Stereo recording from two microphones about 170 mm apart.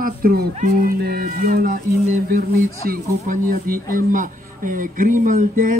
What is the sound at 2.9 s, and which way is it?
Speech, 55° right (ahead or behind).